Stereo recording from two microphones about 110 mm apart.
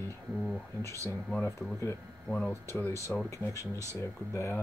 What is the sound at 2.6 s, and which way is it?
Speech, 25° left (ahead or behind).